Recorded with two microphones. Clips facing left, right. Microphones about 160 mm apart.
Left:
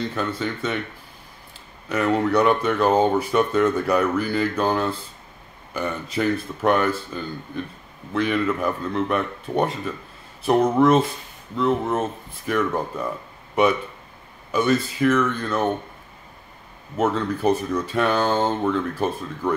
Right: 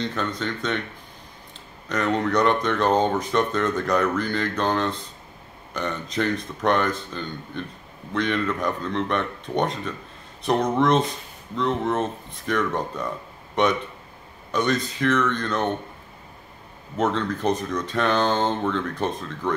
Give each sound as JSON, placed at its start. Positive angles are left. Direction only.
{"t": 0.0, "sound": "speech", "side_deg": 5}
{"t": 1.9, "sound": "speech", "side_deg": 5}
{"t": 16.9, "sound": "speech", "side_deg": 5}